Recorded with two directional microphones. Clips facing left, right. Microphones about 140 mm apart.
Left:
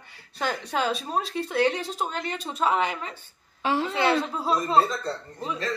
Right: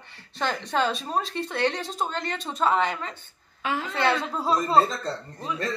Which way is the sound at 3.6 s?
35° left (ahead or behind).